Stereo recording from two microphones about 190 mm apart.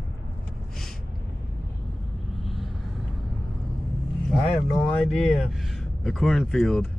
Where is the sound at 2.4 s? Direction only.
Centre (ahead or behind).